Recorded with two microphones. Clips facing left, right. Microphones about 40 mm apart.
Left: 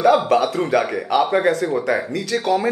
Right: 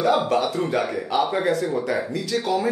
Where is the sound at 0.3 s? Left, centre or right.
Left.